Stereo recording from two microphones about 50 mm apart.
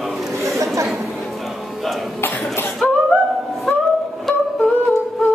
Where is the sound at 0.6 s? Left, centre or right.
Right.